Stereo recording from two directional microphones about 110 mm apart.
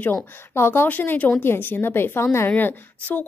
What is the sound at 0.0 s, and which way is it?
A woman's voice, 20° left (ahead or behind).